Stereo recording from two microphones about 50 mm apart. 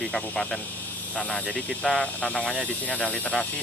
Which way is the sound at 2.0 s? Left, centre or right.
Left.